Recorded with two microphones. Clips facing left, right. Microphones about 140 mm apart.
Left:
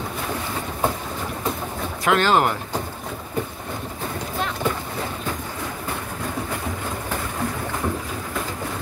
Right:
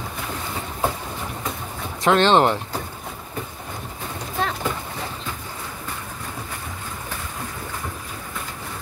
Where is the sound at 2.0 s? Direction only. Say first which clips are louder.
Right 3 dB; 30° right (ahead or behind).